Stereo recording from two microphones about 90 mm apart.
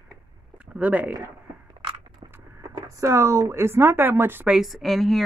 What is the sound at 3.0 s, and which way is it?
Speech, 35° right (ahead or behind).